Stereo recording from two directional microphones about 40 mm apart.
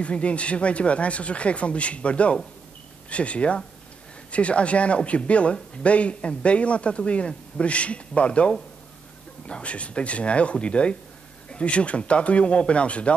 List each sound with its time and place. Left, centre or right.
0.0 s speech: left